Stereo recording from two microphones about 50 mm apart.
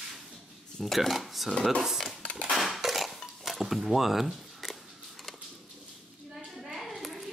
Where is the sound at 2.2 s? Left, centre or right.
Left.